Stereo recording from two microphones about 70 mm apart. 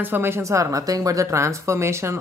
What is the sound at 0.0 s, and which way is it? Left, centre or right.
Speech, right.